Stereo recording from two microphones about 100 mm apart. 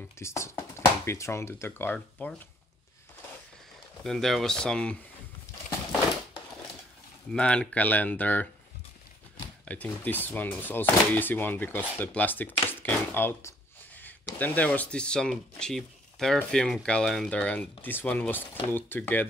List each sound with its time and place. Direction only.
0.2 s speech: 30° left (ahead or behind)
4.0 s speech: 5° left (ahead or behind)
7.3 s speech: 10° left (ahead or behind)
9.7 s speech: 15° left (ahead or behind)
12.6 s a sound: 20° left (ahead or behind)
14.4 s speech: 15° left (ahead or behind)